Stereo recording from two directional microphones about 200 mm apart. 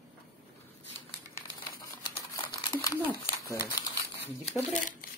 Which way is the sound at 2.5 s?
15° left (ahead or behind).